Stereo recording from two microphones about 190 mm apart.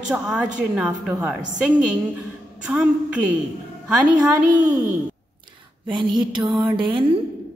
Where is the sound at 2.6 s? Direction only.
5° right (ahead or behind).